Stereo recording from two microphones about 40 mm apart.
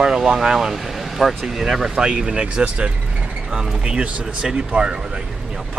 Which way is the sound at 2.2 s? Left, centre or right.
Right.